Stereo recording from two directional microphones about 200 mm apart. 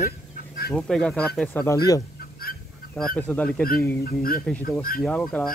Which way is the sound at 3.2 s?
10° left (ahead or behind).